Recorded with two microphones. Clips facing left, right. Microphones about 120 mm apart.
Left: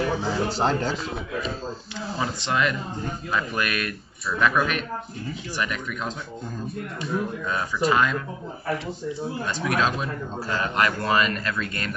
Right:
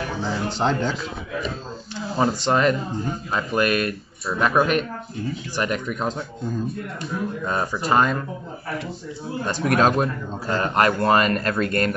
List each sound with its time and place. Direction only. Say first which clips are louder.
0.2 s speech: even; 5° left (ahead or behind)
2.1 s speech: right 6 dB; 40° right (ahead or behind)
7.4 s speech: right 1 dB; 40° right (ahead or behind)
9.5 s speech: right 6 dB; 50° right (ahead or behind)